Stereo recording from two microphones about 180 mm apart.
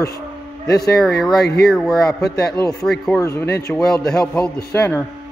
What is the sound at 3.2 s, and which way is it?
A man's voice, 15° left (ahead or behind).